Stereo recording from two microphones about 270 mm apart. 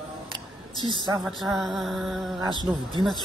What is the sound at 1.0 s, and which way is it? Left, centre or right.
Speech, centre.